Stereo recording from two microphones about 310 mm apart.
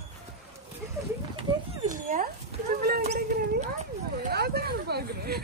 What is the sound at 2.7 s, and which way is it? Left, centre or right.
Wail, right.